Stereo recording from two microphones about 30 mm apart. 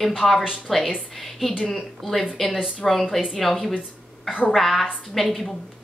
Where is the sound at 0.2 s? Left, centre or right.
Centre.